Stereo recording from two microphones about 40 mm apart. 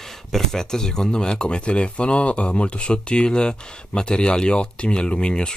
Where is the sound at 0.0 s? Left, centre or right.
Centre.